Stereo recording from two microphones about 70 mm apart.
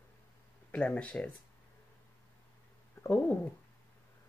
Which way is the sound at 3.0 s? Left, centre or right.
Left.